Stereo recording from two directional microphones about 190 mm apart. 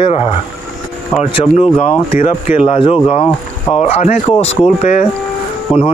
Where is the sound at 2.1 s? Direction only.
35° left (ahead or behind).